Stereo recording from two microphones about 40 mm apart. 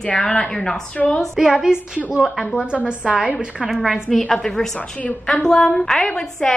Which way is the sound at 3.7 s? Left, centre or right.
Centre.